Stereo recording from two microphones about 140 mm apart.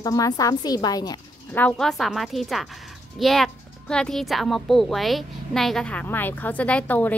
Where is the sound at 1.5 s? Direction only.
10° left (ahead or behind).